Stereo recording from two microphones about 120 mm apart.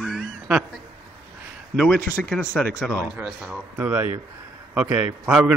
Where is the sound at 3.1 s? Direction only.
5° right (ahead or behind).